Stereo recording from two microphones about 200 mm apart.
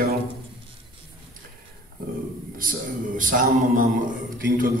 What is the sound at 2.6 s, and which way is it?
A man's voice, 45° right (ahead or behind).